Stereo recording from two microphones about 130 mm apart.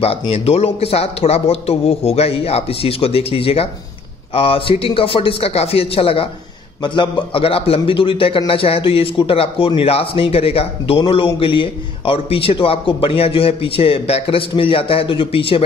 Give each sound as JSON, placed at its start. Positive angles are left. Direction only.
{"t": 0.3, "sound": "a man's voice", "side_deg": 50}